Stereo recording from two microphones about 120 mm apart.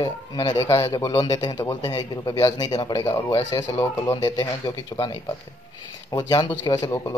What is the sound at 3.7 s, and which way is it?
Speech, 20° left (ahead or behind).